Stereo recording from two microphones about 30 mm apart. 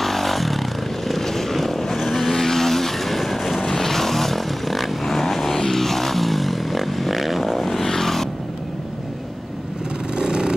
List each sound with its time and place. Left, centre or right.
0.0 s vehicle: centre
10.1 s vehicle: right